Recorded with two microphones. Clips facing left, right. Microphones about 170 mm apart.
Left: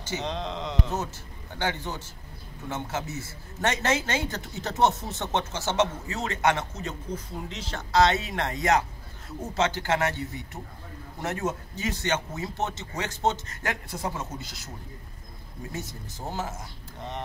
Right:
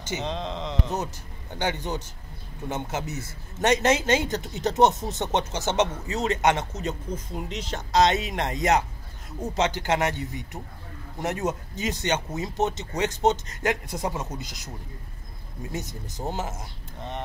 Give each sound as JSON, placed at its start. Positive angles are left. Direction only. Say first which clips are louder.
{"t": 0.2, "sound": "speech", "louder": "right 1 dB", "side_deg": 0}
{"t": 1.6, "sound": "a man's voice", "louder": "right 2 dB", "side_deg": -15}
{"t": 15.7, "sound": "a man's voice", "louder": "right 3 dB", "side_deg": -20}